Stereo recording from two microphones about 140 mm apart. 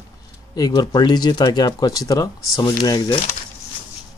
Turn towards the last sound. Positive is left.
turn(degrees=25)  # may be behind; listen again after turning